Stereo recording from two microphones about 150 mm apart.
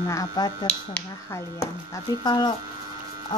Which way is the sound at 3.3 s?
25° left (ahead or behind).